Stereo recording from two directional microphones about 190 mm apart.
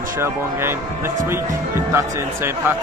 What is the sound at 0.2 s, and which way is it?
Speech, 10° right (ahead or behind).